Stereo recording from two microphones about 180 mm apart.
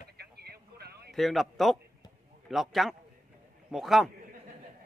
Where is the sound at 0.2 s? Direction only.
60° right (ahead or behind).